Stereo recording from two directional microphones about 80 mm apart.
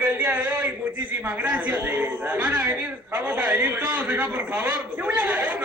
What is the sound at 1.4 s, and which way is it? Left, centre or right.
A man's voice, right.